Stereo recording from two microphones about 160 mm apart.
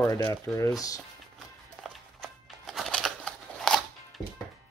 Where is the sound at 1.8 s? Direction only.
Centre (ahead or behind).